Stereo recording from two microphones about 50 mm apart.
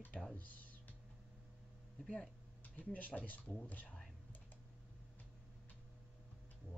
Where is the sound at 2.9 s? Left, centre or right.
Left.